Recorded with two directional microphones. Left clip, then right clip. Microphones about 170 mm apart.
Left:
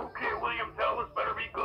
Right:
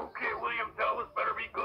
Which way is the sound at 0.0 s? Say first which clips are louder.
Left 2 dB; 10° right (ahead or behind).